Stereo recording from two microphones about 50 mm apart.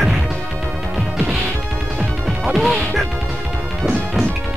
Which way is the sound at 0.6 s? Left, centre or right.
Centre.